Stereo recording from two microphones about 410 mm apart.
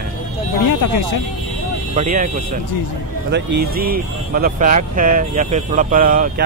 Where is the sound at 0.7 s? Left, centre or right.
Left.